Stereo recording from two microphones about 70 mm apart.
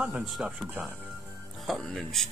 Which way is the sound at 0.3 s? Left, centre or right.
Centre.